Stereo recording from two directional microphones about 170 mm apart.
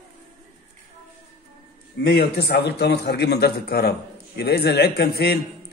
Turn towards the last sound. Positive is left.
turn(degrees=65)  # may be behind; listen again after turning